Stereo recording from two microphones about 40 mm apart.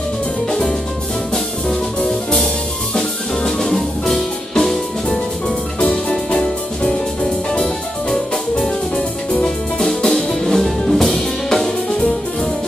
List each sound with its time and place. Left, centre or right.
0.5 s music: centre
5.8 s music: left
6.3 s music: centre
8.1 s music: centre